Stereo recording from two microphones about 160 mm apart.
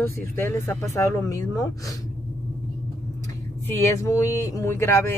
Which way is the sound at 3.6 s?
15° left (ahead or behind).